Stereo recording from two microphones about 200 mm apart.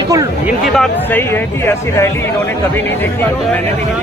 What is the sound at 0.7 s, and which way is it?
Speech, 5° left (ahead or behind).